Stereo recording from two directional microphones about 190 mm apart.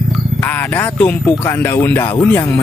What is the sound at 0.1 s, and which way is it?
Speech, 10° left (ahead or behind).